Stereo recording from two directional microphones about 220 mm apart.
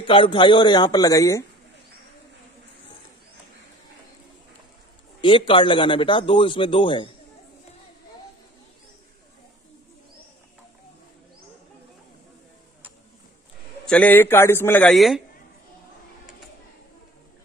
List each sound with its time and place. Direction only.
0.0 s a man's voice: 25° left (ahead or behind)
5.2 s a man's voice: 20° left (ahead or behind)
13.8 s a man's voice: 5° left (ahead or behind)